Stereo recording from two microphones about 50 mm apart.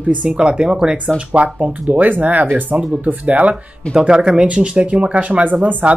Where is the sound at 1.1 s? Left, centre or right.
Right.